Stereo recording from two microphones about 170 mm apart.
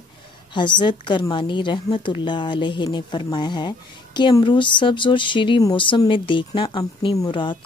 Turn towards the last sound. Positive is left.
turn(degrees=30)  # may be behind; listen again after turning